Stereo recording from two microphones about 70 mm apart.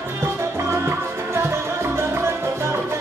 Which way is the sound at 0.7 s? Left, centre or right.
Right.